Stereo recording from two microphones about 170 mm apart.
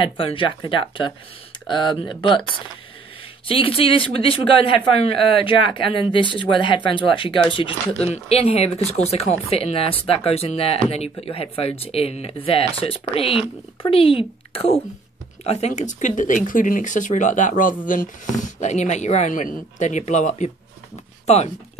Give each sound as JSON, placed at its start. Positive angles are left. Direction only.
{"t": 0.0, "sound": "speech", "side_deg": 30}
{"t": 3.4, "sound": "speech", "side_deg": 30}